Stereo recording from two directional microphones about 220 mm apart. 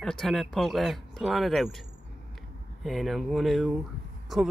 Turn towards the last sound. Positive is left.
turn(degrees=0)  # may be behind; listen again after turning